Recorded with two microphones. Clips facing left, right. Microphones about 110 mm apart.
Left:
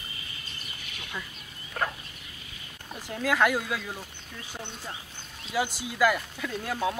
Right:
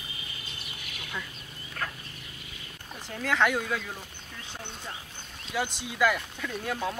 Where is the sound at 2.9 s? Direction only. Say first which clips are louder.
Left 2 dB; 5° left (ahead or behind).